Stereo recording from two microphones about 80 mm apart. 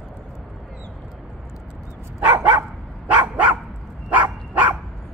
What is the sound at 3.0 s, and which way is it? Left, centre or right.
Dog, centre.